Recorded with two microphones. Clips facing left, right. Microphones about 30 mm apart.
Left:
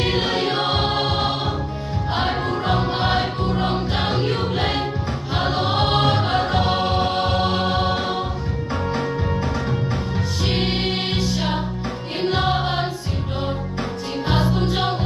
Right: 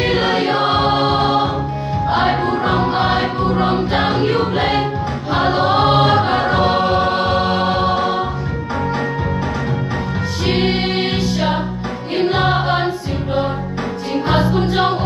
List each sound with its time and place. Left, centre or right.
0.3 s music: centre
2.9 s music: centre
3.9 s music: right
5.3 s choir: right
5.7 s choir: centre
6.2 s music: centre
10.4 s music: centre
14.2 s music: right